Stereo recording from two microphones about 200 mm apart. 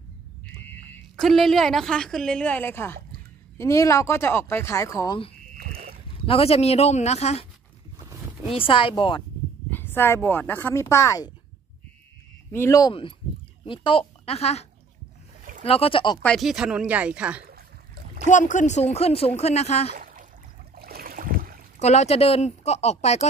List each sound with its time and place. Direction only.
0.6 s a woman's voice: 5° left (ahead or behind); by 7.4 s 30° left (ahead or behind)
8.5 s speech: 25° left (ahead or behind)
9.7 s speech: 10° left (ahead or behind)
12.4 s speech: 15° left (ahead or behind)
16.2 s speech: centre (ahead or behind)
17.5 s a sound: 50° right (ahead or behind)
18.2 s speech: 40° left (ahead or behind)
20.0 s a sound: 45° right (ahead or behind)
20.7 s boat: 50° right (ahead or behind)
21.7 s speech: 35° left (ahead or behind)